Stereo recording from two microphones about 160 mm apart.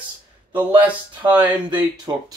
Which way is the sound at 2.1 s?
25° right (ahead or behind).